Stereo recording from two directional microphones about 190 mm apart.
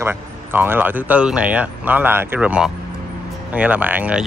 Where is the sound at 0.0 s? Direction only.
10° right (ahead or behind).